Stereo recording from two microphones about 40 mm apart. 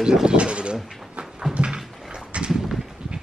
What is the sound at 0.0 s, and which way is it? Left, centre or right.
Speech, centre.